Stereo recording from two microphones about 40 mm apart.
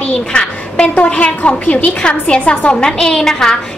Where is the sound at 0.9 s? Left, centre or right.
Left.